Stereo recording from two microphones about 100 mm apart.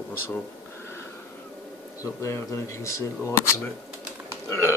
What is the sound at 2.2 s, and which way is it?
Speech, 30° left (ahead or behind).